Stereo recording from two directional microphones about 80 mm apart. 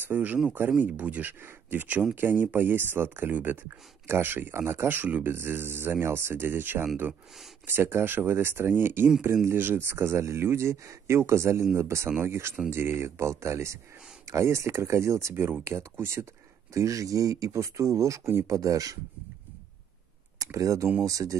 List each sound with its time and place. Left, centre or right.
0.0 s speech: right
20.3 s speech: right